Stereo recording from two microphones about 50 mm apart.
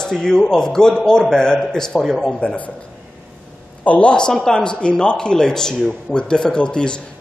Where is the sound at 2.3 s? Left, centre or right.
Left.